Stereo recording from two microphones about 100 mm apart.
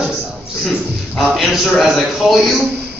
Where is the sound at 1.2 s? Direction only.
Centre (ahead or behind).